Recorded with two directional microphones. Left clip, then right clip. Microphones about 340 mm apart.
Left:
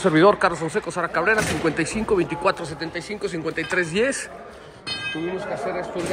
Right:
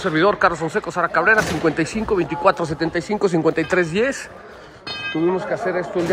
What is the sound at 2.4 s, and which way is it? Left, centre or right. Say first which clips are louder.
Speech: right 6 dB; centre.